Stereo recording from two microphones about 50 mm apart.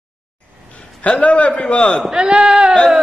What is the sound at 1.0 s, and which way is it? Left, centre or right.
A man's voice, left.